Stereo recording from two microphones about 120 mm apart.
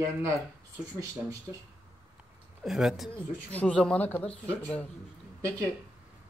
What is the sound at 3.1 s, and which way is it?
Speech, 10° left (ahead or behind).